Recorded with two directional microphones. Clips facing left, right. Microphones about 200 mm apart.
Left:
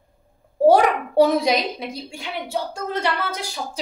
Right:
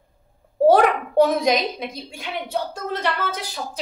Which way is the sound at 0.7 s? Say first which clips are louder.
Even; 10° left (ahead or behind).